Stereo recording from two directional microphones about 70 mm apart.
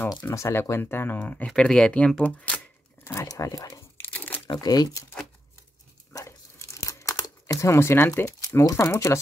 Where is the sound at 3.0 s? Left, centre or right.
Left.